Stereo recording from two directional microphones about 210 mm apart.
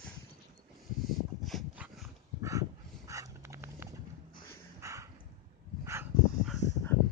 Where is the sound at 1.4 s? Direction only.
Centre (ahead or behind).